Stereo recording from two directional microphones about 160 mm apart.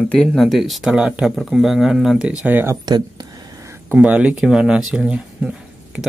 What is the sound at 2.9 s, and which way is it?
Speech, 25° right (ahead or behind).